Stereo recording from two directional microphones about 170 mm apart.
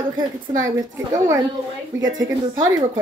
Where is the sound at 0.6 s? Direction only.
20° right (ahead or behind).